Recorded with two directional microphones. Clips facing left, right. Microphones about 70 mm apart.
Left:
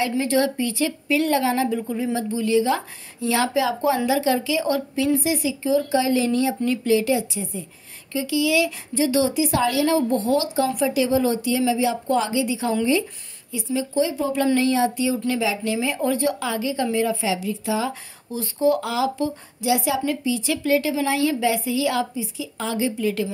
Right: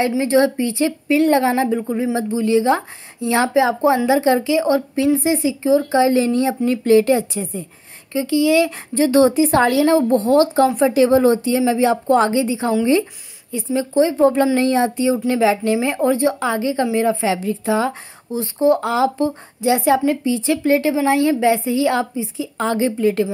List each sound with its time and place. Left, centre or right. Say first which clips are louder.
0.2 s speech: right 6 dB; right
18.3 s speech: right 4 dB; right